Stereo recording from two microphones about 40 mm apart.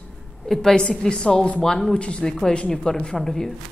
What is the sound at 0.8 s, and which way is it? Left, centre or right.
Speech, left.